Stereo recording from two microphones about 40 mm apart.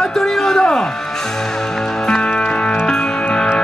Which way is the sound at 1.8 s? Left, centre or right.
Centre.